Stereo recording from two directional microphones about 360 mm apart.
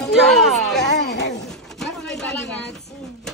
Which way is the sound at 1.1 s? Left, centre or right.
Left.